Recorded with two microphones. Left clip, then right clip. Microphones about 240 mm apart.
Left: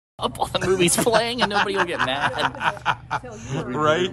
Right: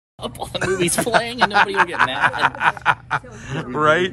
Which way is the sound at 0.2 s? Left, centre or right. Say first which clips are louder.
Left 2 dB; centre.